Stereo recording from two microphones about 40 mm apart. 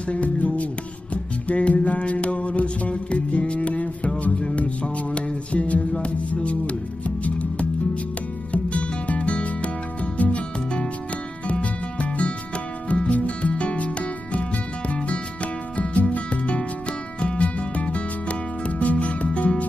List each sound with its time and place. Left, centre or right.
0.1 s music: left
4.3 s music: centre; by 10.4 s left
11.4 s music: left
16.0 s music: left